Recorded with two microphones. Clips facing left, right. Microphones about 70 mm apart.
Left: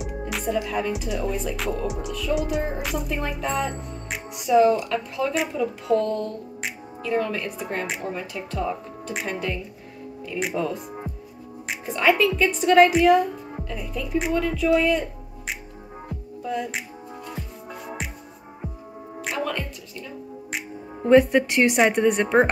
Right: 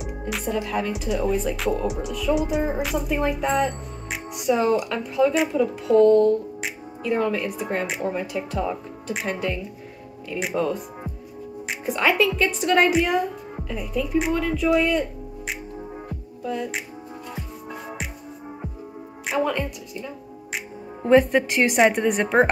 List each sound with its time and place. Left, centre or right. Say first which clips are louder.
0.0 s speech: even; centre
11.8 s speech: left 1 dB; centre
19.4 s speech: right 4 dB; centre
20.5 s speech: right 1 dB; centre